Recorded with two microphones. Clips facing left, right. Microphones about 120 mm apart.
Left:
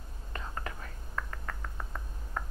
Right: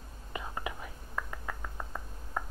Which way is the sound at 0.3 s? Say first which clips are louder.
Right 2 dB; 10° right (ahead or behind).